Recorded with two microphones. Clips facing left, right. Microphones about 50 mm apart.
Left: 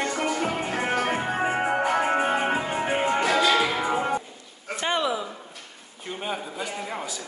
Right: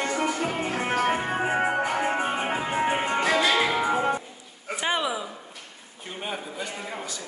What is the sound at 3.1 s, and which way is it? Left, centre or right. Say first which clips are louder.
Music: left 1 dB; centre.